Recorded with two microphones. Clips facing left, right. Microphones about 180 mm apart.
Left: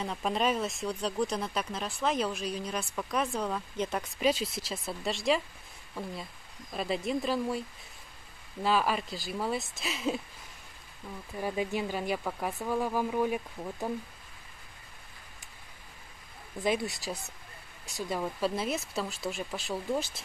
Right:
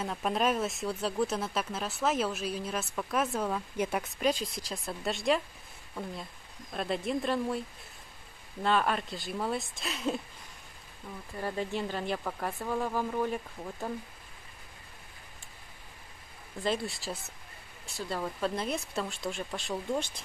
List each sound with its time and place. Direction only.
0.0 s speech: centre (ahead or behind)
4.2 s speech: 5° left (ahead or behind)
6.7 s speech: centre (ahead or behind)
8.6 s speech: 5° left (ahead or behind)
11.3 s speech: 10° left (ahead or behind)
16.6 s speech: 15° left (ahead or behind)
18.2 s speech: 5° left (ahead or behind)